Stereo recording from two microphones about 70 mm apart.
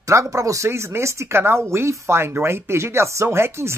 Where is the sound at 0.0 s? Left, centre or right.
Right.